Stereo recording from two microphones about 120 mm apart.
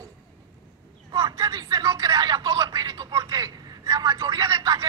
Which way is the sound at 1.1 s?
30° right (ahead or behind).